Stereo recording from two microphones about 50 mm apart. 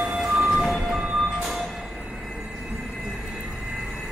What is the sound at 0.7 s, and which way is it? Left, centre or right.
Music, centre.